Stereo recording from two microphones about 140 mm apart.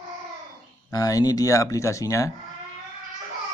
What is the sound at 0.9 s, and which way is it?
Speech, 25° left (ahead or behind).